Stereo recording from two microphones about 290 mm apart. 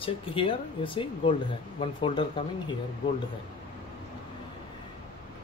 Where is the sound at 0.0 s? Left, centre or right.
Centre.